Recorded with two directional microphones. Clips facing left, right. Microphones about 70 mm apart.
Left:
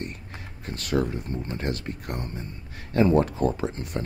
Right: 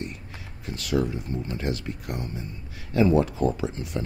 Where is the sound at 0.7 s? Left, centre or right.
Left.